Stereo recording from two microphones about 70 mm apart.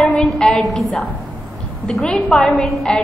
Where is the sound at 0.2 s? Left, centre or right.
Centre.